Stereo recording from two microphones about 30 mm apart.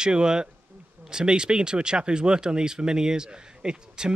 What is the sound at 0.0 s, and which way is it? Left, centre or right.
Speech, right.